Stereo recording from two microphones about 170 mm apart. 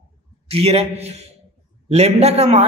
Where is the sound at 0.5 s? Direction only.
35° right (ahead or behind).